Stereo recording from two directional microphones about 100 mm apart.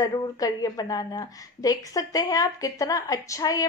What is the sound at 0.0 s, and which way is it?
A woman's voice, 35° left (ahead or behind).